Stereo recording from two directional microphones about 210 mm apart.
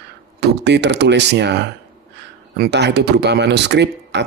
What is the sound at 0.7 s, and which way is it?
Speech, 55° right (ahead or behind).